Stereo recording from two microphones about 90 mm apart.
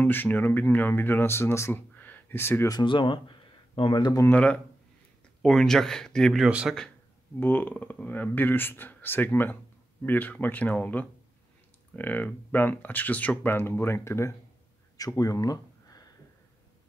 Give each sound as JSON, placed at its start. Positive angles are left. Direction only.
{"t": 0.0, "sound": "speech", "side_deg": 20}
{"t": 2.0, "sound": "a sound", "side_deg": 20}
{"t": 2.8, "sound": "speech", "side_deg": 65}
{"t": 4.3, "sound": "speech", "side_deg": 15}
{"t": 6.4, "sound": "speech", "side_deg": -10}
{"t": 7.3, "sound": "speech", "side_deg": 20}